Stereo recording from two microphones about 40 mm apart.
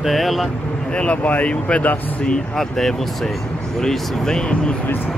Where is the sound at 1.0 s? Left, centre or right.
Left.